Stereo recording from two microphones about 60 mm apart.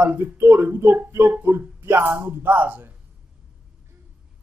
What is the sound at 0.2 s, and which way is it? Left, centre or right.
A man's voice, right.